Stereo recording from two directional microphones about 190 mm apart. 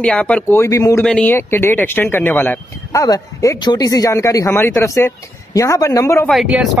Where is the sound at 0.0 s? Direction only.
5° left (ahead or behind).